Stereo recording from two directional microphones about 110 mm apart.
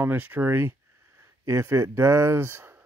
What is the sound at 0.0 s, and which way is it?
Speech, 20° right (ahead or behind).